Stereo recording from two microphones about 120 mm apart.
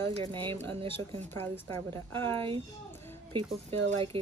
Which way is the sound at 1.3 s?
20° left (ahead or behind).